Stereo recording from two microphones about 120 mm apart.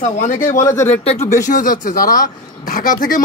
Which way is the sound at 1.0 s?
65° left (ahead or behind).